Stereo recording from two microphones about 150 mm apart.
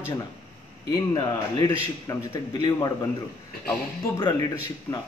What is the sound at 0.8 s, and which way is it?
Speech, 25° left (ahead or behind).